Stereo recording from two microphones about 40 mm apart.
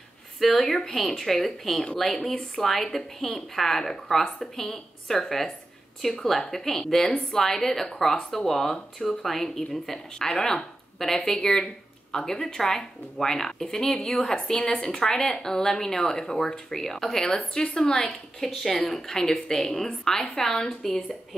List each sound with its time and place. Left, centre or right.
0.4 s a woman's voice: centre
14.2 s a woman's voice: left; by 21.0 s centre